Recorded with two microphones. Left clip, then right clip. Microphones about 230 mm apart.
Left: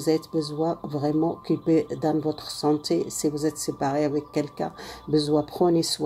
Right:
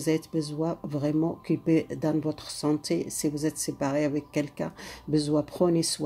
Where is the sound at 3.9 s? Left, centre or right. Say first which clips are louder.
Left 3 dB; right.